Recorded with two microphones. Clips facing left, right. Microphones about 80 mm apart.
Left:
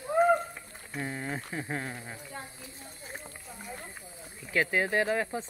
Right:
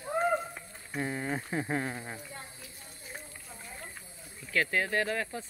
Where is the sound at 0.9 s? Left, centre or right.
Centre.